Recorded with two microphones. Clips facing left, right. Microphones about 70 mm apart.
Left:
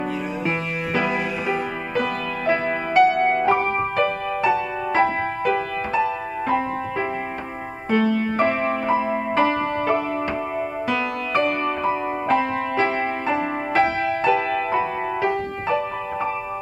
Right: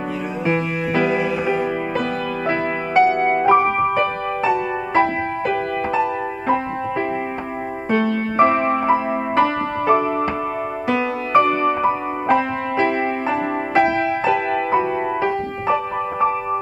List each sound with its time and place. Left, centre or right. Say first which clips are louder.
1.0 s music: right 4 dB; centre
5.5 s music: right 2 dB; centre
7.9 s music: even; centre